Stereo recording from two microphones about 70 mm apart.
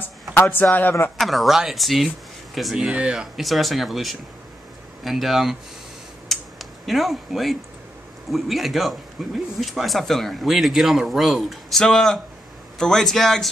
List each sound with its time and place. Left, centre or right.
0.4 s speech: left
1.2 s speech: centre
3.3 s speech: centre
6.2 s a sound: centre
8.3 s speech: centre
11.8 s a man's voice: centre